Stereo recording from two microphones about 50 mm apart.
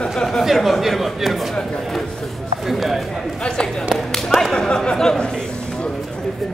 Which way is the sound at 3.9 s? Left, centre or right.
Centre.